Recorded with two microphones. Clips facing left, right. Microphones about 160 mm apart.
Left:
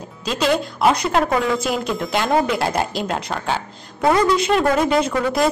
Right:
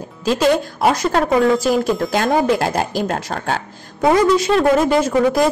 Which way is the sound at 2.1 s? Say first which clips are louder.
Right 2 dB; 45° right (ahead or behind).